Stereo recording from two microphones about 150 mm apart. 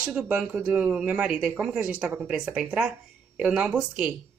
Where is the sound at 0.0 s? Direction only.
10° right (ahead or behind).